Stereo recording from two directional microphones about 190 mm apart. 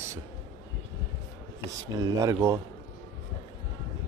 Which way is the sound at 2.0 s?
15° right (ahead or behind).